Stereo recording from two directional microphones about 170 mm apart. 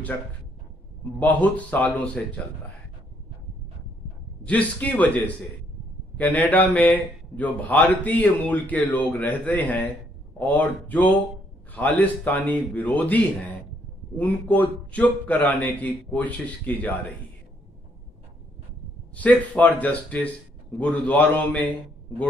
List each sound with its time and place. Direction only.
1.2 s a man's voice: 10° left (ahead or behind)
4.5 s a man's voice: 10° left (ahead or behind)
19.1 s a man's voice: 10° left (ahead or behind)